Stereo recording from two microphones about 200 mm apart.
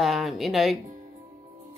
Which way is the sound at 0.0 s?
Centre (ahead or behind).